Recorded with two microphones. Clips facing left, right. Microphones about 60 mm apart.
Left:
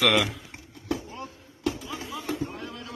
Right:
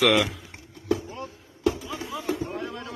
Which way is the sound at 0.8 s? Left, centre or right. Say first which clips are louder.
Right 4 dB; centre.